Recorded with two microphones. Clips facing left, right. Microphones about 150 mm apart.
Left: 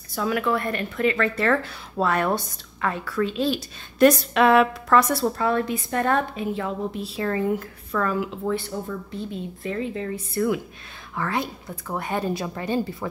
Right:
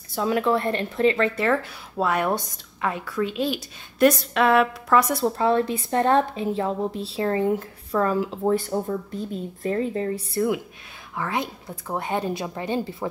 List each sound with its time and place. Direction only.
0.1 s a woman's voice: 25° right (ahead or behind)
4.0 s a sound: centre (ahead or behind)
4.8 s a woman's voice: 10° right (ahead or behind); by 10.4 s 35° right (ahead or behind)
11.1 s a woman's voice: 15° right (ahead or behind)